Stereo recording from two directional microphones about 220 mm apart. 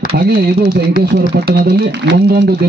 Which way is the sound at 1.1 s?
50° right (ahead or behind).